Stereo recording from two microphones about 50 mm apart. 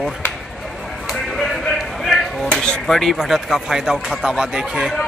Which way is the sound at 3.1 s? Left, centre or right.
Centre.